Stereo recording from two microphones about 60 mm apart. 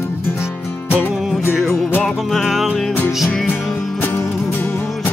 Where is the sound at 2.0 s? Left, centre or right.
Centre.